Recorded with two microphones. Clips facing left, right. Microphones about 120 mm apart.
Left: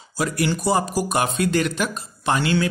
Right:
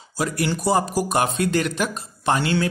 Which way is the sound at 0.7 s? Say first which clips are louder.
Right 3 dB; 45° right (ahead or behind).